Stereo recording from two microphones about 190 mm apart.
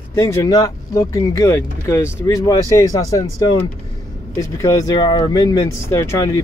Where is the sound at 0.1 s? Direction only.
15° left (ahead or behind).